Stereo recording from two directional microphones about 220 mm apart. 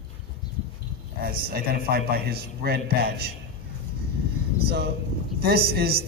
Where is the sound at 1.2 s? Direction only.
40° right (ahead or behind).